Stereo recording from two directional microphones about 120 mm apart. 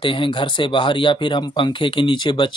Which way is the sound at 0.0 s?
45° left (ahead or behind).